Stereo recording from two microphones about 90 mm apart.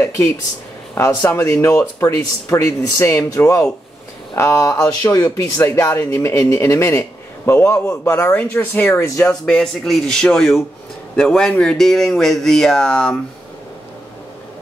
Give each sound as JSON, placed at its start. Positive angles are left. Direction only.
{"t": 0.0, "sound": "speech", "side_deg": 25}
{"t": 9.0, "sound": "speech", "side_deg": 35}
{"t": 9.5, "sound": "speech", "side_deg": 5}